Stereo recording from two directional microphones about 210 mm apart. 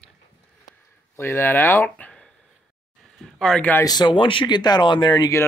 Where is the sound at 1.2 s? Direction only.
10° left (ahead or behind).